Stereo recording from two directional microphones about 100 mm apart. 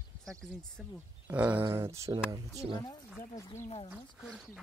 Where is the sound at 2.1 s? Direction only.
40° right (ahead or behind).